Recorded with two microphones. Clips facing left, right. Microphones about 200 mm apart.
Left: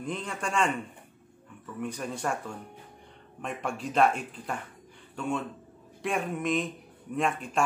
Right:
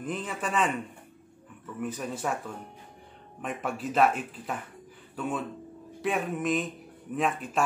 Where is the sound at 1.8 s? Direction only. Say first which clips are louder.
Right 1 dB; 5° right (ahead or behind).